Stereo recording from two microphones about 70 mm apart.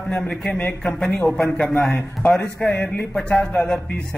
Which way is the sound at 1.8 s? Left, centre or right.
Left.